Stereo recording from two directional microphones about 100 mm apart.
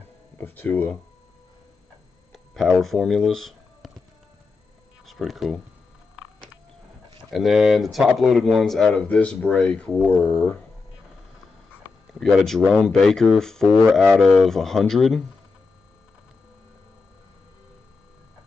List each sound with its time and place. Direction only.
0.4 s speech: 20° left (ahead or behind)
2.3 s a sound: centre (ahead or behind)
5.0 s speech: centre (ahead or behind)
7.2 s speech: 5° right (ahead or behind); by 10.6 s 15° left (ahead or behind)
12.1 s speech: centre (ahead or behind)